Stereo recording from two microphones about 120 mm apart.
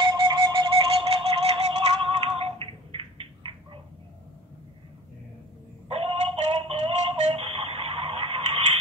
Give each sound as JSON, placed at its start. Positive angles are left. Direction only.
{"t": 0.0, "sound": "music", "side_deg": -35}
{"t": 5.9, "sound": "synthetic singing", "side_deg": -55}